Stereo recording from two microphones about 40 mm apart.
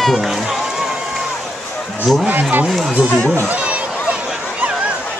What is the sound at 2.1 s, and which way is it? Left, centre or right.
Speech, centre.